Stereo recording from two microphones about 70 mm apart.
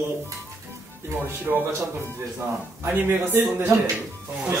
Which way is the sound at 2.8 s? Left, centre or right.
Right.